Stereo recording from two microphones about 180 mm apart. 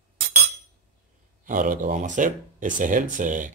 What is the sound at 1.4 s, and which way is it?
Speech, 50° right (ahead or behind).